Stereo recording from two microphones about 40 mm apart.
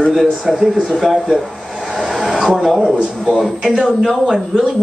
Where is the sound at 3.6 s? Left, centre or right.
Right.